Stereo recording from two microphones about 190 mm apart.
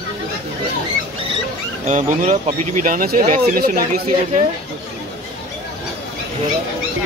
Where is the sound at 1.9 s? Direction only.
40° right (ahead or behind).